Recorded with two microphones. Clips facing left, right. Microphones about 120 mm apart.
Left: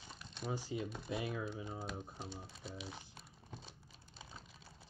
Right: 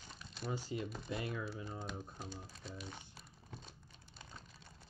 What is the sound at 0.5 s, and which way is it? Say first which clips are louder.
Speech: even; 5° left (ahead or behind).